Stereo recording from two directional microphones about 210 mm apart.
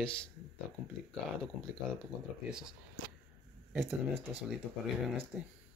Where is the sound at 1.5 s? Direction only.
5° right (ahead or behind).